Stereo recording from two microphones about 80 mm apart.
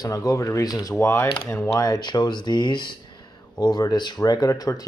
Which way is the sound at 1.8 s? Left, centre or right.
Left.